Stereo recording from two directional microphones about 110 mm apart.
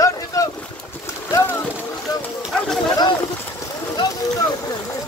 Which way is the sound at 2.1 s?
35° left (ahead or behind).